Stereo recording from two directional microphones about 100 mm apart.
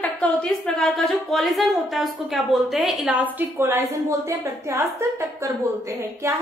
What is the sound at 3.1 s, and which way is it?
A woman's voice, 20° right (ahead or behind).